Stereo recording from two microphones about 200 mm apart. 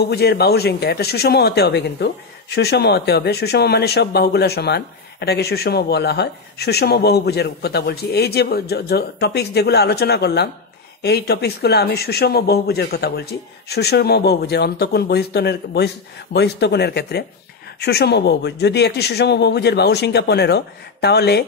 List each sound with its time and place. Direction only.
0.1 s speech: 55° left (ahead or behind)